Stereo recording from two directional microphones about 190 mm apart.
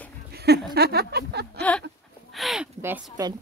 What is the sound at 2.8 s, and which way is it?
Speech, 10° right (ahead or behind).